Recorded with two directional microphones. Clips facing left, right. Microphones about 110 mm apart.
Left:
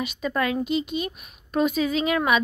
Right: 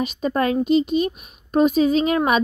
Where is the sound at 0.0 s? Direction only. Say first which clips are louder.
Right 5 dB; 35° right (ahead or behind).